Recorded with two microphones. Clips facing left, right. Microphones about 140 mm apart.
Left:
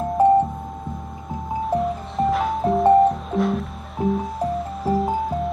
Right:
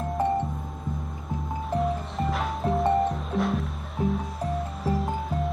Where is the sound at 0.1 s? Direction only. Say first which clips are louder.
Left 11 dB; centre (ahead or behind).